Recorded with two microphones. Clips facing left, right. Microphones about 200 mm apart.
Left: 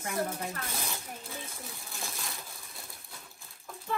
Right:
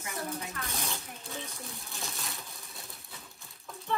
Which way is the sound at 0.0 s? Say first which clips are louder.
Left 4 dB; 55° left (ahead or behind).